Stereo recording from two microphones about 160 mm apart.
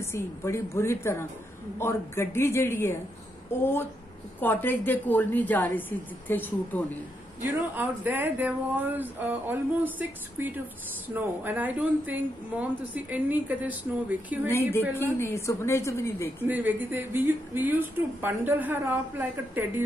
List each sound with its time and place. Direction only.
0.0 s a woman's voice: 15° left (ahead or behind)
7.4 s a woman's voice: 10° right (ahead or behind)
14.5 s a woman's voice: 15° left (ahead or behind)
16.4 s a woman's voice: 10° right (ahead or behind)